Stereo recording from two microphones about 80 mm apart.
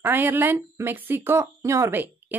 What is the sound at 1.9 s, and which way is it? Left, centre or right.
Speech, right.